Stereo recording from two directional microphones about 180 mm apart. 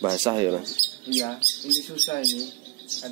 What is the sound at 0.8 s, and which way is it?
Mouse, 40° right (ahead or behind).